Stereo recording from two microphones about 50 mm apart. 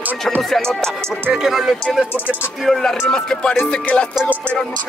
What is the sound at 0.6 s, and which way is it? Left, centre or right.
Speech, centre.